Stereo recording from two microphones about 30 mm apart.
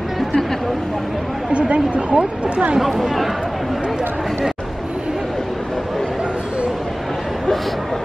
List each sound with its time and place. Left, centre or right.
1.5 s a woman's voice: right
2.8 s speech: centre